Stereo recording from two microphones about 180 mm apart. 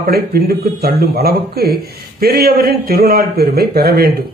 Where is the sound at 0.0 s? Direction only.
55° right (ahead or behind).